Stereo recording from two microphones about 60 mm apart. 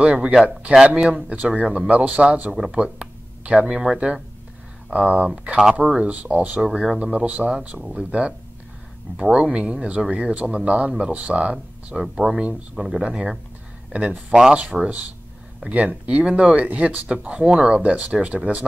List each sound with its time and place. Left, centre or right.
0.0 s speech: centre
2.5 s speech: centre
5.6 s speech: centre; by 6.6 s right
6.6 s speech: centre
7.2 s speech: right
11.5 s speech: centre
14.3 s speech: centre
16.5 s speech: right